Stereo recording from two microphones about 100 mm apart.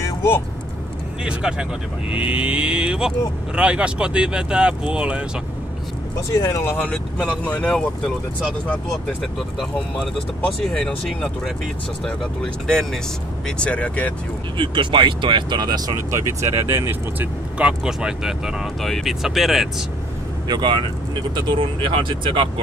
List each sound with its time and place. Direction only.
0.0 s vehicle: 25° left (ahead or behind)
1.2 s speech: 10° right (ahead or behind)
6.3 s speech: 30° left (ahead or behind); by 11.5 s 5° left (ahead or behind)
12.6 s speech: 5° left (ahead or behind)
14.6 s speech: 55° right (ahead or behind); by 17.3 s 25° right (ahead or behind)
17.6 s speech: 10° right (ahead or behind)
20.4 s speech: 45° right (ahead or behind)